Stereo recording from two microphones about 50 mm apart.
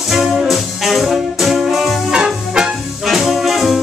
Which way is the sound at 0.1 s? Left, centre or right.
Centre.